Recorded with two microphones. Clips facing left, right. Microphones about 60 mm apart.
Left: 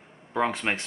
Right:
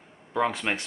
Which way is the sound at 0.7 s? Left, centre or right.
Left.